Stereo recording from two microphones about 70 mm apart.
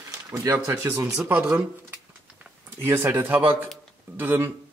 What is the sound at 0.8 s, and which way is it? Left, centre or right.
Speech, right.